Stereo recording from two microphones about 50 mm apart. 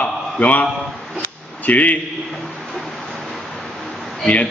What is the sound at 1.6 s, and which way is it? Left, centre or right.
Speech, left.